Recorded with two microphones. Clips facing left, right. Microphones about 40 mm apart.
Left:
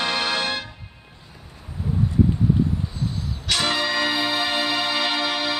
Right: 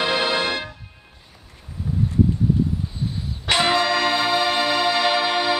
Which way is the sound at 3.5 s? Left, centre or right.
Centre.